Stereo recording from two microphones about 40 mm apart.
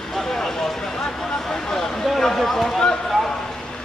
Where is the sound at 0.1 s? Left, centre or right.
Centre.